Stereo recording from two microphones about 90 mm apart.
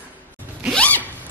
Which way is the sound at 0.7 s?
15° left (ahead or behind).